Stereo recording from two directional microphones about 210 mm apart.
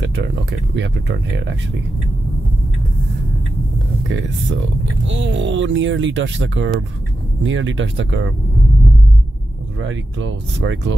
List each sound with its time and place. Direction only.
0.0 s speech: 55° right (ahead or behind)
4.1 s speech: 65° right (ahead or behind)
9.8 s speech: 60° right (ahead or behind)